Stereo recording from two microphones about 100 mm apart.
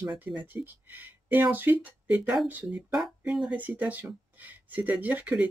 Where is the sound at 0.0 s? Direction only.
20° right (ahead or behind).